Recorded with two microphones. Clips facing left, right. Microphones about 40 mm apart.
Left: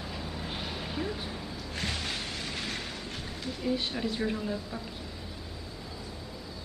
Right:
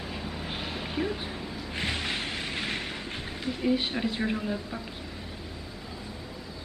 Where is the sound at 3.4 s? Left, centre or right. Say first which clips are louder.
Right 4 dB; right.